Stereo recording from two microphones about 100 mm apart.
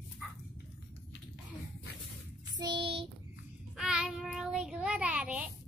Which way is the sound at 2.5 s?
50° right (ahead or behind).